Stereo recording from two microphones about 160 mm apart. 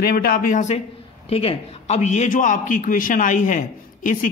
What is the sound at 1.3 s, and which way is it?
A man's voice, 40° left (ahead or behind).